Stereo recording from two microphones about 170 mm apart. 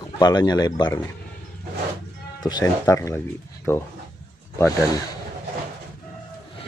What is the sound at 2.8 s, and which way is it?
Speech, 15° left (ahead or behind).